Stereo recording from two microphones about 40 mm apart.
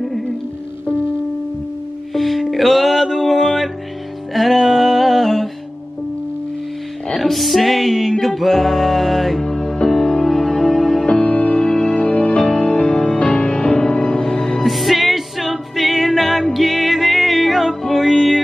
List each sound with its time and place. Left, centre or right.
2.1 s music: centre
7.2 s music: centre
9.5 s music: centre
11.2 s music: left; by 18.4 s centre